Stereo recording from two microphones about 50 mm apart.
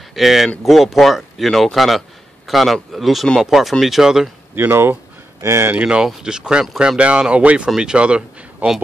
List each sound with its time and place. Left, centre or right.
0.1 s speech: centre
4.6 s speech: right
5.4 s speech: right
5.8 s speech: centre